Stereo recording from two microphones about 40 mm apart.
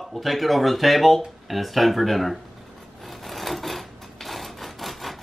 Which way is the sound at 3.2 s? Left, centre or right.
Centre.